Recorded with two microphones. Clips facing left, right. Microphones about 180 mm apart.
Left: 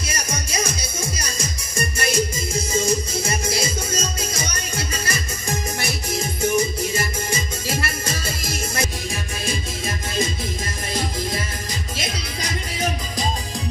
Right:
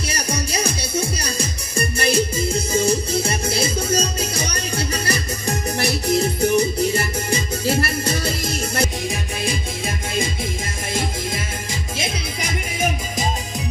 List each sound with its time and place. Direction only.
0.1 s music: 35° right (ahead or behind)